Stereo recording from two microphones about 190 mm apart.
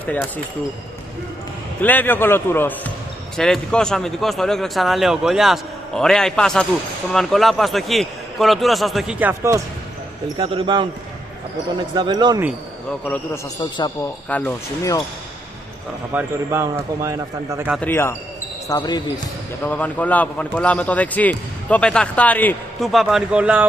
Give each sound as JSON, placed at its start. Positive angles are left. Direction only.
{"t": 1.8, "sound": "a man's voice", "side_deg": 10}
{"t": 9.3, "sound": "a man's voice", "side_deg": -15}
{"t": 10.3, "sound": "speech", "side_deg": -30}
{"t": 11.9, "sound": "speech", "side_deg": -25}
{"t": 13.6, "sound": "speech", "side_deg": 25}
{"t": 14.3, "sound": "a man's voice", "side_deg": 10}
{"t": 16.1, "sound": "a man's voice", "side_deg": -10}
{"t": 17.8, "sound": "a man's voice", "side_deg": 15}
{"t": 19.6, "sound": "a man's voice", "side_deg": 10}